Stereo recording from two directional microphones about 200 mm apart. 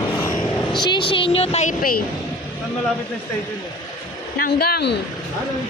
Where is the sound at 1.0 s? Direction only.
25° left (ahead or behind); by 2.0 s 40° left (ahead or behind).